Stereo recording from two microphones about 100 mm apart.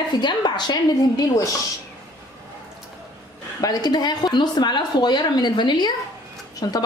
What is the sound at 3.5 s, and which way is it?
A woman's voice, 40° left (ahead or behind).